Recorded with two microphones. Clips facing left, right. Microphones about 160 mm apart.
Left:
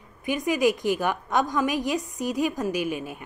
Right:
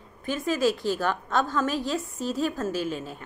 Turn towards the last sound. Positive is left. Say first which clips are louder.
# left 2 dB
turn(degrees=15)  # may be behind; listen again after turning